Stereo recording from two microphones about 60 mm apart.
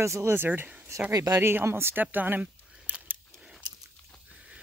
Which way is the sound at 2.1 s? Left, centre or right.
Right.